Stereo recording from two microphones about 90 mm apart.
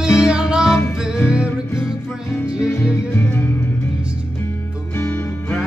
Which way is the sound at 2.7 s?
30° left (ahead or behind).